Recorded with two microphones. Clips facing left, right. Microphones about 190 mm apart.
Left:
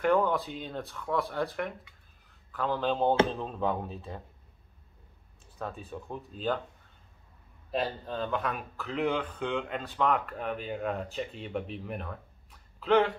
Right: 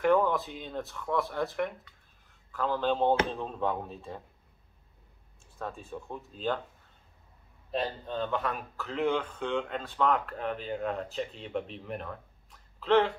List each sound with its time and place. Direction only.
0.0 s speech: centre (ahead or behind)
5.6 s speech: 5° left (ahead or behind)
7.7 s speech: centre (ahead or behind)